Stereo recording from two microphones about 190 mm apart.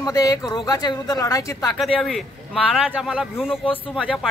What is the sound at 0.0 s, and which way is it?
Speech, 20° left (ahead or behind).